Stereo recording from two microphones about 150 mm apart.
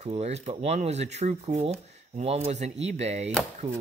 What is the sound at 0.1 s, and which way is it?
Speech, 45° right (ahead or behind).